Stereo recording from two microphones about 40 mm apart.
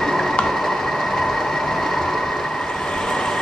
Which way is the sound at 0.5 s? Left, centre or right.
Centre.